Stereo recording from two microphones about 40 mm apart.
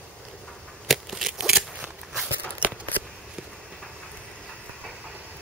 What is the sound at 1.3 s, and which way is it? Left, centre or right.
Scissors, right.